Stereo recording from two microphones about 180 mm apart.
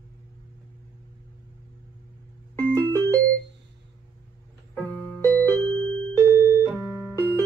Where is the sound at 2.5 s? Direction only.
10° left (ahead or behind).